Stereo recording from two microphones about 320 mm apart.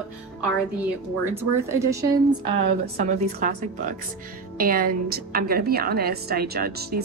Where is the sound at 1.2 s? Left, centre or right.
Centre.